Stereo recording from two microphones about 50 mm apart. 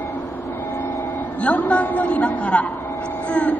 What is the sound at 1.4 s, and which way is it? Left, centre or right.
Speech, left.